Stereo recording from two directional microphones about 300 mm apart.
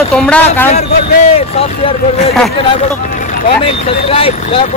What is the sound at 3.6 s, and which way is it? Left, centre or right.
Speech, centre.